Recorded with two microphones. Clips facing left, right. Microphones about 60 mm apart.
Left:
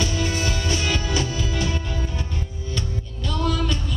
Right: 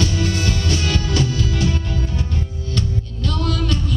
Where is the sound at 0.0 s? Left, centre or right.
Centre.